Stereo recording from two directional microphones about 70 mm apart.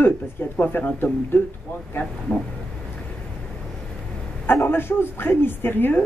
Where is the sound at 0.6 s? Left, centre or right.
Left.